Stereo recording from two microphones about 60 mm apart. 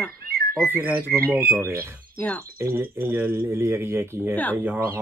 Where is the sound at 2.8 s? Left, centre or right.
Right.